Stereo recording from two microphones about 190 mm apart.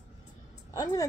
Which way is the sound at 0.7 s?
20° left (ahead or behind).